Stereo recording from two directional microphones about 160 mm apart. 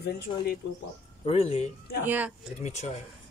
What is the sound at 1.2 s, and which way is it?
Speech, 40° left (ahead or behind).